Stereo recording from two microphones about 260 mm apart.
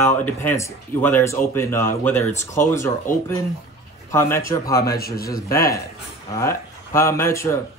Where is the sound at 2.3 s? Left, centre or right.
Left.